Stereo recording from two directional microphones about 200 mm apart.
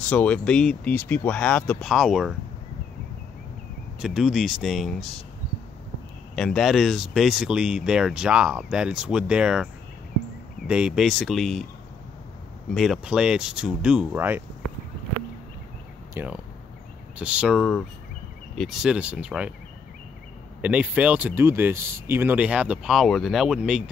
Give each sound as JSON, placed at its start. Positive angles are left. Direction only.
{"t": 0.1, "sound": "speech", "side_deg": 5}
{"t": 4.0, "sound": "speech", "side_deg": 0}
{"t": 6.3, "sound": "speech", "side_deg": 5}
{"t": 10.7, "sound": "speech", "side_deg": -5}
{"t": 12.7, "sound": "speech", "side_deg": 0}
{"t": 16.2, "sound": "speech", "side_deg": -10}
{"t": 20.6, "sound": "speech", "side_deg": -5}